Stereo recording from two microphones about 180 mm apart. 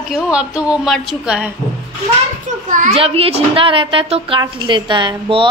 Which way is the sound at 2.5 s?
45° right (ahead or behind).